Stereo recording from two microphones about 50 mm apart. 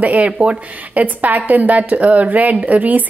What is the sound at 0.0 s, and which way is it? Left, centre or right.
A woman's voice, right.